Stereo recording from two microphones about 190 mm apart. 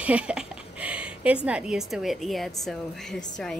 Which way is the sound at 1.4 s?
5° right (ahead or behind).